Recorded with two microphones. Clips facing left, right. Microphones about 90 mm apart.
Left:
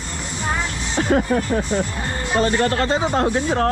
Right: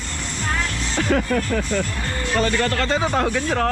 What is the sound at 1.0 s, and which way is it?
Speech, 30° left (ahead or behind).